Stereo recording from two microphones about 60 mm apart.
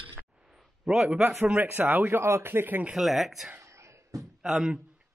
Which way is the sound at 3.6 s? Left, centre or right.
Right.